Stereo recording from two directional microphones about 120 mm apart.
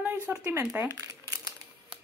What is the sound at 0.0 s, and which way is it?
Crumpling, 15° right (ahead or behind).